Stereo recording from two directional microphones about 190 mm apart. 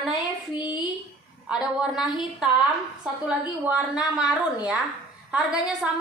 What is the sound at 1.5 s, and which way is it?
Speech, 5° right (ahead or behind).